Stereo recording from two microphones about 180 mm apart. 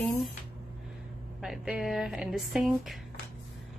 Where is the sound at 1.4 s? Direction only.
Centre (ahead or behind).